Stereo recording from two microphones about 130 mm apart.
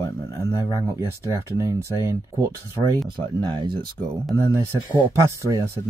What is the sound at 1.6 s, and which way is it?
Speech, 25° right (ahead or behind).